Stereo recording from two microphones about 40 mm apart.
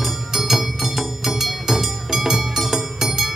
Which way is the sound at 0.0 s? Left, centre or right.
Centre.